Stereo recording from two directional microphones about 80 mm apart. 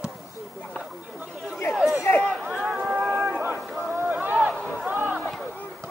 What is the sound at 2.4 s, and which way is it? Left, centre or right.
Run, centre.